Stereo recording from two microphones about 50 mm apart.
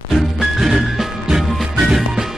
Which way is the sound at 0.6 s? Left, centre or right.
Centre.